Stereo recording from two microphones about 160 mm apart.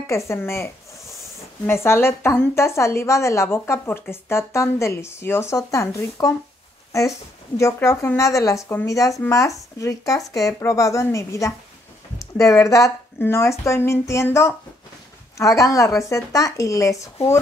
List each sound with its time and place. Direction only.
0.0 s a woman's voice: 15° left (ahead or behind)
1.7 s a woman's voice: 15° left (ahead or behind)
7.5 s a woman's voice: 15° left (ahead or behind)